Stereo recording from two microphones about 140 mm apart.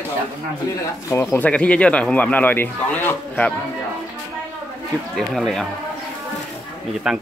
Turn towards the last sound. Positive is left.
turn(degrees=-5)  # may be behind; listen again after turning